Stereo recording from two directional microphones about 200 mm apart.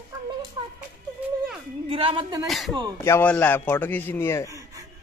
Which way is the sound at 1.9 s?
25° right (ahead or behind).